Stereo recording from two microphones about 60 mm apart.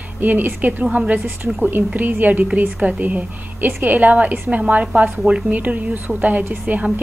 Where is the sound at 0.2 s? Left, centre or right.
Right.